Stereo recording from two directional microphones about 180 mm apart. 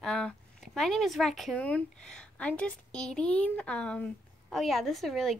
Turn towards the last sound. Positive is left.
turn(degrees=0)  # may be behind; listen again after turning